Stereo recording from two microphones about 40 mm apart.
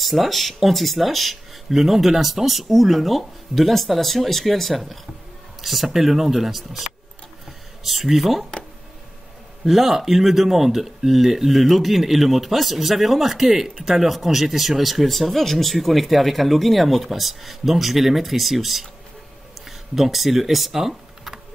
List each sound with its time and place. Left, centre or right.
0.0 s speech: centre
9.7 s speech: centre
20.0 s speech: centre